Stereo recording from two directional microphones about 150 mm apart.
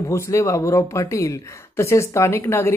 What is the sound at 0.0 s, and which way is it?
Speech, 20° left (ahead or behind).